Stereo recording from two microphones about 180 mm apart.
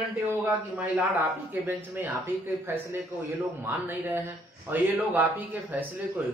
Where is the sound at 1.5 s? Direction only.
10° right (ahead or behind).